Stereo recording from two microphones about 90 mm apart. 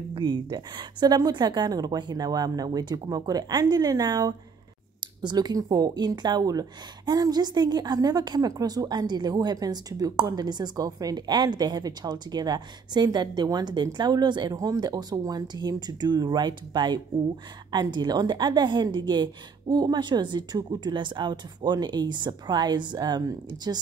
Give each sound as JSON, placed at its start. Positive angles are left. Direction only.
{"t": 0.1, "sound": "a woman's voice", "side_deg": -60}